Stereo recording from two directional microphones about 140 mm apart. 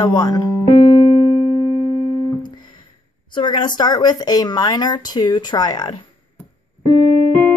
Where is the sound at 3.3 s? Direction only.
30° left (ahead or behind).